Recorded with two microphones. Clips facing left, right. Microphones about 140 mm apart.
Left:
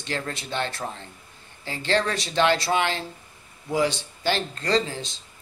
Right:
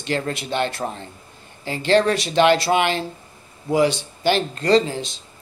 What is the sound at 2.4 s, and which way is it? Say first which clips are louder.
Speech: right 5 dB; 65° right (ahead or behind).